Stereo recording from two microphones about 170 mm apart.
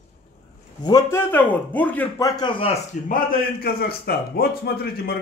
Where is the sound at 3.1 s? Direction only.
60° left (ahead or behind).